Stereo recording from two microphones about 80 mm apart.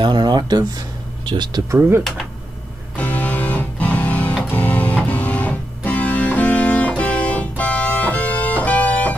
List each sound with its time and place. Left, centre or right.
0.0 s speech: right
1.7 s speech: right
3.0 s music: centre